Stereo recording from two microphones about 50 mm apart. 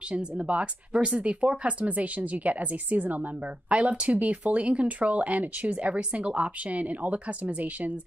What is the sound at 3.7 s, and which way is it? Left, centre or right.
Speech, centre.